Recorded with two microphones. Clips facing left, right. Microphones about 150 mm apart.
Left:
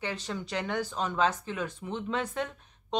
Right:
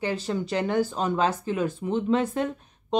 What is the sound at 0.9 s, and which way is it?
Speech, 35° right (ahead or behind).